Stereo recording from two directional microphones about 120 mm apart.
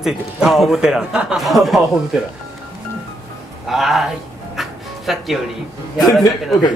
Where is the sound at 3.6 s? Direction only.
Centre (ahead or behind).